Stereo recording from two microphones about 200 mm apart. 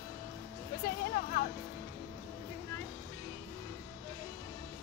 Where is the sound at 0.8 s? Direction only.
50° left (ahead or behind).